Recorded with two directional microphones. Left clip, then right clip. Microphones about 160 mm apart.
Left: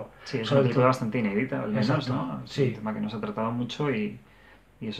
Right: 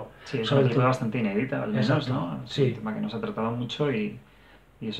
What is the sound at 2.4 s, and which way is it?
Speech, 5° right (ahead or behind).